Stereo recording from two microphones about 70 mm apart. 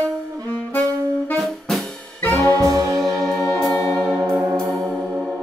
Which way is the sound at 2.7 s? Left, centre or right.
Right.